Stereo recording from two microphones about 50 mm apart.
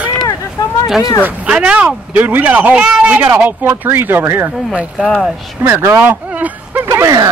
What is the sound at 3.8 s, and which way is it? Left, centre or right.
Speech, right.